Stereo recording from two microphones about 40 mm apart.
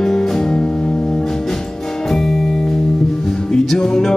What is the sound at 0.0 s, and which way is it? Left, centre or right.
Music, centre.